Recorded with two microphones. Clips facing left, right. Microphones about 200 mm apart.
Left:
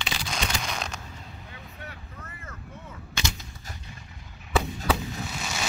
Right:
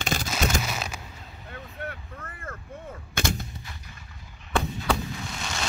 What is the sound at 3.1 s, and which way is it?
Artillery fire, 55° right (ahead or behind).